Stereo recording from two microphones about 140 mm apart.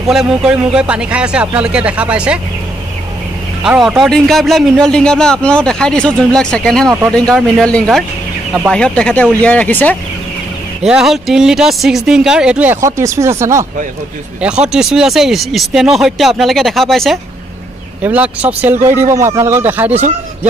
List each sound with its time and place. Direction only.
0.1 s a man's voice: 5° right (ahead or behind)
3.6 s a man's voice: 5° right (ahead or behind)
10.8 s a man's voice: 5° right (ahead or behind)
12.8 s speech: 20° right (ahead or behind)
14.4 s a man's voice: 5° right (ahead or behind)
18.0 s a man's voice: 10° right (ahead or behind)